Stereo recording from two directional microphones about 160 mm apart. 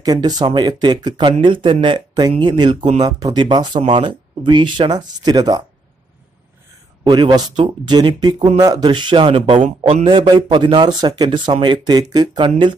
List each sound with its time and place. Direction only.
0.0 s speech: 25° right (ahead or behind)
7.1 s speech: 25° right (ahead or behind)